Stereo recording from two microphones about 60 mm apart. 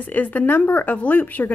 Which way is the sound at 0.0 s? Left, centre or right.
Left.